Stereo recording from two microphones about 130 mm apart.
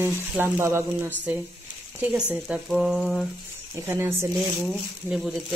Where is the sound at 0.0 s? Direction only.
20° right (ahead or behind).